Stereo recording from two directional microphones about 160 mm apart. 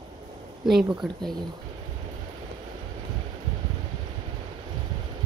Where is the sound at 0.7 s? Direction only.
Centre (ahead or behind).